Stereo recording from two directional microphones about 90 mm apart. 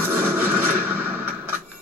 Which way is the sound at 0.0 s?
25° right (ahead or behind).